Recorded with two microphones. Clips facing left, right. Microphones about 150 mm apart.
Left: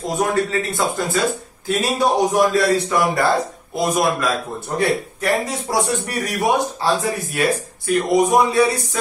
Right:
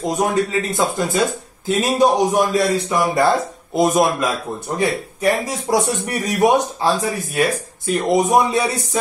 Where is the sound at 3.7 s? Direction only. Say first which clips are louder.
Right 3 dB; 20° right (ahead or behind).